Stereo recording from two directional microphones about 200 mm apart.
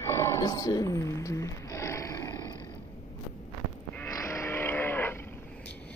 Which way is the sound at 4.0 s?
15° left (ahead or behind).